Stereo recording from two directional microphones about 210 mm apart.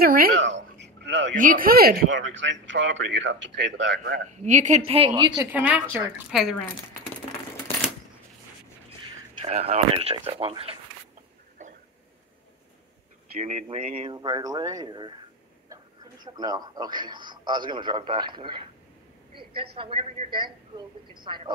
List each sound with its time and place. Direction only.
0.0 s a sound: 45° right (ahead or behind)
1.3 s speech: 40° right (ahead or behind)
2.1 s a man's voice: 60° right (ahead or behind)
4.5 s a woman's voice: 35° right (ahead or behind)
5.5 s a woman's voice: 5° right (ahead or behind)
9.4 s a woman's voice: 30° right (ahead or behind)
11.6 s a sound: 35° right (ahead or behind)
13.4 s a woman's voice: 30° right (ahead or behind)